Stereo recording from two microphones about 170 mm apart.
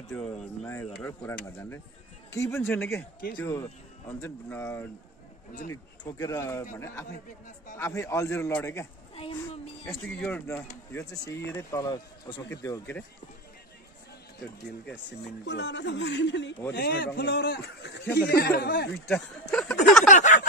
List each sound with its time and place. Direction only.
0.1 s speech: 5° left (ahead or behind)
9.8 s speech: 5° left (ahead or behind)
15.4 s speech: 90° left
16.7 s a man's voice: 75° left (ahead or behind)
18.9 s speech: 5° left (ahead or behind)
19.5 s a sound: 5° left (ahead or behind)
20.1 s a sound: 45° left (ahead or behind)